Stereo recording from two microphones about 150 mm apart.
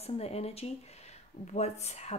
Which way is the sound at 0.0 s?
45° left (ahead or behind).